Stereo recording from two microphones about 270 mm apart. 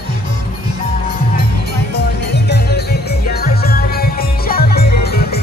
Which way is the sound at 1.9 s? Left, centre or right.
Left.